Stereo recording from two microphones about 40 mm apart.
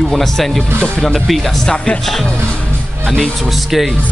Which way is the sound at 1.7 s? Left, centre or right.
Left.